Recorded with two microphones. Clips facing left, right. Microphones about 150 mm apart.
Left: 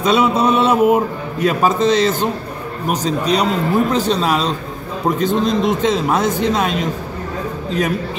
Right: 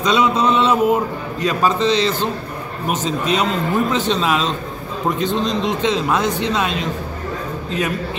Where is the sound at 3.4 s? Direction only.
40° left (ahead or behind).